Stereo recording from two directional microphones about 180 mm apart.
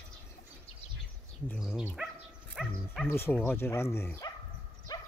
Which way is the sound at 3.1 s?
10° left (ahead or behind).